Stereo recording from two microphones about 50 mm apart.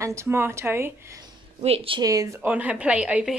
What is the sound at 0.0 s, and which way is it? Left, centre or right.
Speech, right.